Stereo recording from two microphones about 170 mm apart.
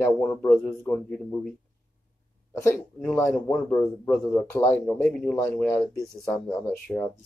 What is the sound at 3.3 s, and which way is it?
Speech, 10° left (ahead or behind).